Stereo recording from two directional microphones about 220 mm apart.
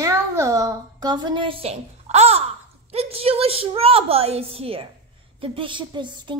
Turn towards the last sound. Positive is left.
turn(degrees=-20)  # may be behind; listen again after turning